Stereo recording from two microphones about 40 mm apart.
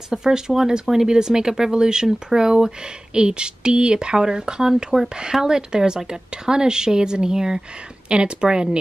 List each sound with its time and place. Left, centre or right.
0.1 s speech: centre